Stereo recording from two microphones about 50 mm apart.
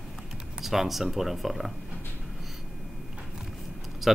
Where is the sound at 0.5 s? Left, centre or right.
Centre.